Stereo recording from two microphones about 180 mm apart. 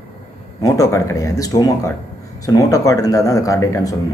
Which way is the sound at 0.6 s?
20° left (ahead or behind).